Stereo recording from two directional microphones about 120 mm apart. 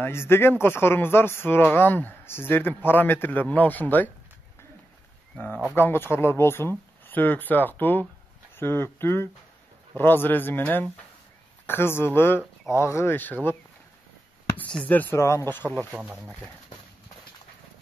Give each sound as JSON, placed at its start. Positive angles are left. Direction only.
{"t": 0.0, "sound": "speech", "side_deg": 20}
{"t": 5.8, "sound": "speech", "side_deg": 20}
{"t": 14.6, "sound": "speech", "side_deg": 10}
{"t": 15.9, "sound": "speech", "side_deg": -10}